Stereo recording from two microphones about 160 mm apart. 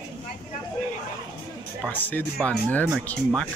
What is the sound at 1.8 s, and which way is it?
Speech, 10° left (ahead or behind).